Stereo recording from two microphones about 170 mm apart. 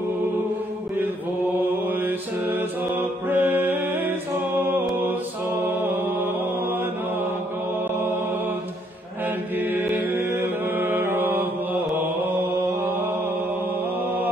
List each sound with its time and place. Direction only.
1.6 s mantra: 10° right (ahead or behind)
4.6 s music: 10° right (ahead or behind)
5.8 s mantra: 10° right (ahead or behind)
9.6 s mantra: 10° right (ahead or behind)